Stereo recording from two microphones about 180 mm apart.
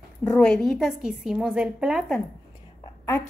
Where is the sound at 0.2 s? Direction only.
5° left (ahead or behind).